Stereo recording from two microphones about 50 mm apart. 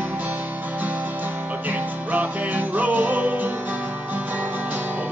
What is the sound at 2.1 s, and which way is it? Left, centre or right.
Music, right.